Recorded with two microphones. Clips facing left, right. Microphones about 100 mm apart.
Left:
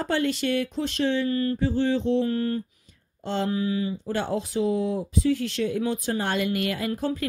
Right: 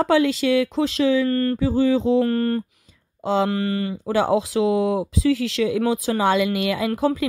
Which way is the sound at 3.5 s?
75° right (ahead or behind).